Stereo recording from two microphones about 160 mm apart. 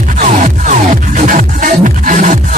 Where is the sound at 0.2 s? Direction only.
50° right (ahead or behind).